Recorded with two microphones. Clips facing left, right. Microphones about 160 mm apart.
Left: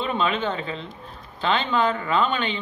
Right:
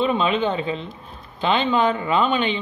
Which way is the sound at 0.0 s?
15° right (ahead or behind).